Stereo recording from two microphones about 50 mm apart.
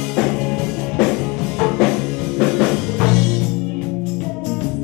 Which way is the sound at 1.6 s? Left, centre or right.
Centre.